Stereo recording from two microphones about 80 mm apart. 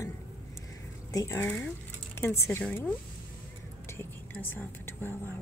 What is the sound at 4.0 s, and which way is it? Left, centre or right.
A woman's voice, left.